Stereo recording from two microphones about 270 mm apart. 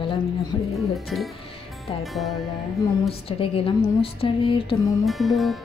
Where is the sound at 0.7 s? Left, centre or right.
Centre.